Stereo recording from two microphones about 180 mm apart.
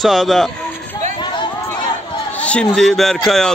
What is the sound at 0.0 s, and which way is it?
Speech, centre (ahead or behind).